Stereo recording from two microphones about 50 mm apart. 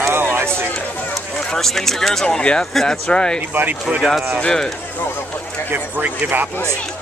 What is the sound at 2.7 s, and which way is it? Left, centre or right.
Speech, centre.